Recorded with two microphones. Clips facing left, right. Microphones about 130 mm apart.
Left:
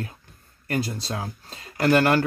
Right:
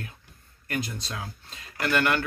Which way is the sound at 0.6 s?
35° left (ahead or behind).